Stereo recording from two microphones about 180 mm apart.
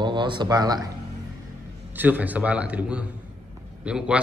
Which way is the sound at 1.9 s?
10° right (ahead or behind).